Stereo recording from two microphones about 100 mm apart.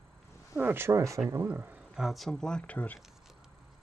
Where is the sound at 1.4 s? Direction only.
20° right (ahead or behind).